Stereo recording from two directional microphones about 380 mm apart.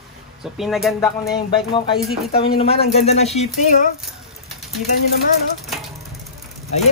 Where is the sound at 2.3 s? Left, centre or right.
Centre.